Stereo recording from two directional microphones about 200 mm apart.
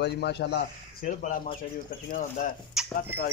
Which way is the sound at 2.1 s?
40° left (ahead or behind).